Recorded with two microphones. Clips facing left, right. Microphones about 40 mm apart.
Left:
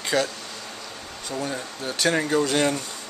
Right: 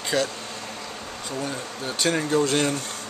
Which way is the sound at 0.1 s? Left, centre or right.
Centre.